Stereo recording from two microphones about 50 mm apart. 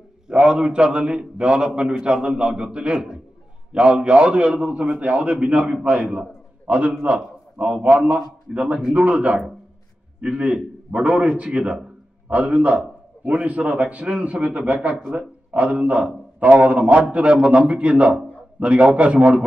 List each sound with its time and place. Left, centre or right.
0.3 s a man's voice: centre